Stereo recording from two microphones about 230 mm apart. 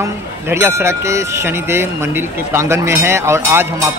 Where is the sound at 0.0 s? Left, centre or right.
Centre.